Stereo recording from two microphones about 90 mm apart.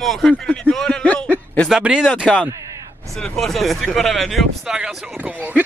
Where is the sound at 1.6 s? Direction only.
10° right (ahead or behind).